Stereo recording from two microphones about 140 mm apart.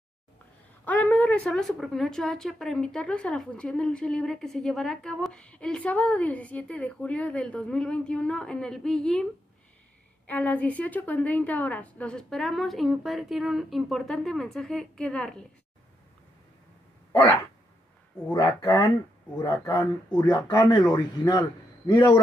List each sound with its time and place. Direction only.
0.8 s a woman's voice: 10° left (ahead or behind)
17.1 s a sound: 35° left (ahead or behind)
18.6 s speech: 20° left (ahead or behind)